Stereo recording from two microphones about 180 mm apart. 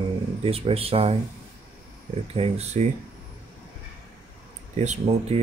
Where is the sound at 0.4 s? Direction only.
30° right (ahead or behind).